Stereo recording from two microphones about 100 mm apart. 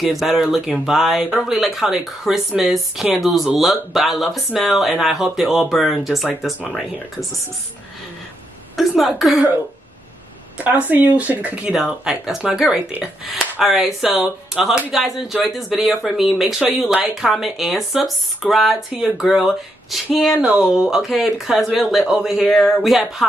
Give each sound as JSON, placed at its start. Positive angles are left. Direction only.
{"t": 0.0, "sound": "speech", "side_deg": 0}
{"t": 8.7, "sound": "a woman's voice", "side_deg": 0}
{"t": 10.6, "sound": "speech", "side_deg": -15}